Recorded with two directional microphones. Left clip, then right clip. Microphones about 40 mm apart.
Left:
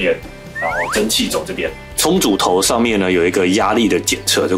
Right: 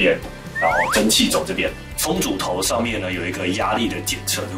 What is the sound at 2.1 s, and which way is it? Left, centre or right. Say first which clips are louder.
Speech: left 10 dB; left.